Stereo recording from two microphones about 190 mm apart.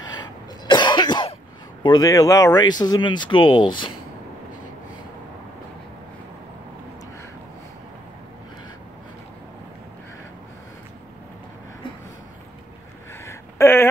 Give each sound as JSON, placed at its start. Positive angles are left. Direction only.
{"t": 0.0, "sound": "cough", "side_deg": 25}
{"t": 1.8, "sound": "speech", "side_deg": 20}
{"t": 13.2, "sound": "a sound", "side_deg": 15}